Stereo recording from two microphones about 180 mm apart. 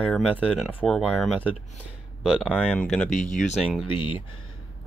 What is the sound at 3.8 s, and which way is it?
Speech, 30° left (ahead or behind).